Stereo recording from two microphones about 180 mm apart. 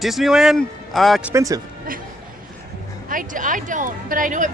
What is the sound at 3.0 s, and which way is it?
A woman's voice, 50° right (ahead or behind).